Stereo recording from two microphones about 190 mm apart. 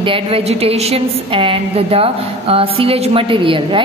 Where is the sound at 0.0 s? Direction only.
30° right (ahead or behind).